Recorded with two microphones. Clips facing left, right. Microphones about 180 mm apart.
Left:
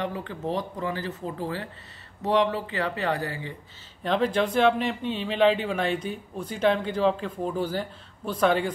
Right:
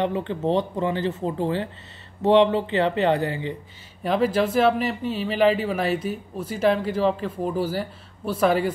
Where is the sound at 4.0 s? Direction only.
5° right (ahead or behind).